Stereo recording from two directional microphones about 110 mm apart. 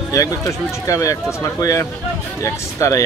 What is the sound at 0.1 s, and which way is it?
Speech, 30° left (ahead or behind).